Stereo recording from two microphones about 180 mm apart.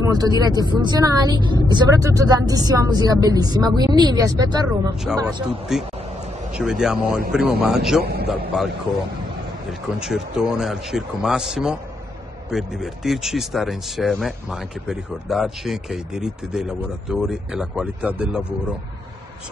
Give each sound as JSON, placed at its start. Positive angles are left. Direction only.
{"t": 0.1, "sound": "a woman's voice", "side_deg": -20}
{"t": 5.2, "sound": "speech", "side_deg": -5}
{"t": 8.0, "sound": "a man's voice", "side_deg": -60}
{"t": 8.5, "sound": "speech", "side_deg": -5}